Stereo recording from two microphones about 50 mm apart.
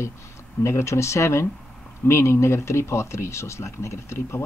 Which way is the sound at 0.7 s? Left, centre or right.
Left.